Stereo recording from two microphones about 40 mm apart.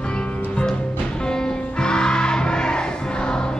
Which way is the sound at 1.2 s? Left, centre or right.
Centre.